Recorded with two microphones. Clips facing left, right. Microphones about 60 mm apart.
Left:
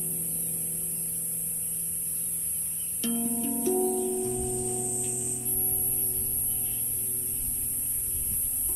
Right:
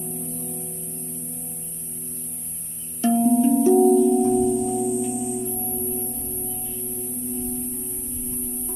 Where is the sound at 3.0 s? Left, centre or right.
Right.